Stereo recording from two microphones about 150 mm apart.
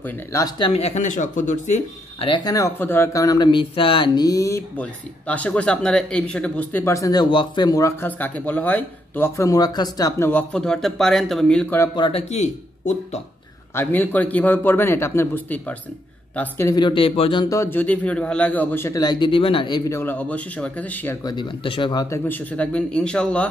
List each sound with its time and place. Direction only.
0.0 s speech: 20° left (ahead or behind)
0.6 s speech: 40° left (ahead or behind); by 1.8 s 55° left (ahead or behind)
2.1 s speech: 35° left (ahead or behind)
4.7 s speech: 10° left (ahead or behind)
11.9 s speech: 35° left (ahead or behind)
13.7 s speech: 10° left (ahead or behind)
16.8 s speech: 35° left (ahead or behind)
17.6 s speech: 15° left (ahead or behind); by 19.8 s 35° left (ahead or behind)
19.9 s speech: 15° left (ahead or behind)
21.2 s speech: 30° left (ahead or behind)
22.1 s speech: 10° left (ahead or behind)